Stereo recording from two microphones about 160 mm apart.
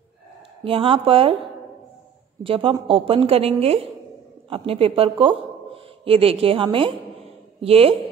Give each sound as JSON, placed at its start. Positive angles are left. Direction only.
{"t": 0.7, "sound": "a woman's voice", "side_deg": -35}
{"t": 2.4, "sound": "a woman's voice", "side_deg": -35}